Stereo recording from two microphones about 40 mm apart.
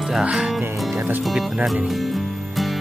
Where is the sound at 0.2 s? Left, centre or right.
Right.